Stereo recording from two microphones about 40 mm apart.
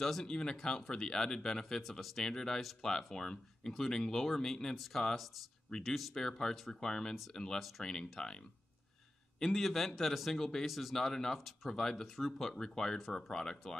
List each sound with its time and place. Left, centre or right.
0.0 s a man's voice: centre
0.3 s speech: centre
1.8 s a man's voice: centre
2.2 s speech: centre
5.9 s a man's voice: centre
6.1 s speech: centre
9.4 s a man's voice: centre